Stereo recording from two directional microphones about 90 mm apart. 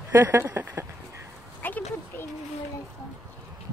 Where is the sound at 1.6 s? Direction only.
20° left (ahead or behind).